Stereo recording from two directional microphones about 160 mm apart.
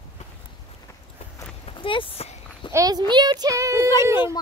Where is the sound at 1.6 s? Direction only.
30° left (ahead or behind).